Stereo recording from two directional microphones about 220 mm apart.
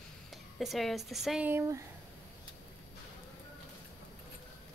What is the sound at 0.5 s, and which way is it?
Speech, centre (ahead or behind).